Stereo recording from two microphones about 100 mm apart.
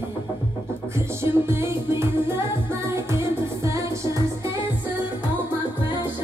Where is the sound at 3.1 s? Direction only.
30° right (ahead or behind).